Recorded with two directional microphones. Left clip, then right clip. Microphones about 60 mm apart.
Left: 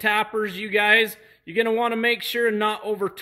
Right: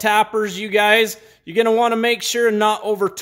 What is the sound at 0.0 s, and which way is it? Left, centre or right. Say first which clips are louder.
Speech: right 6 dB; right.